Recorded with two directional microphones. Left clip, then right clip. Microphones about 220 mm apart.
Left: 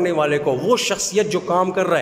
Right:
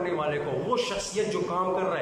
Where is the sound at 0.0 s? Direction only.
50° left (ahead or behind).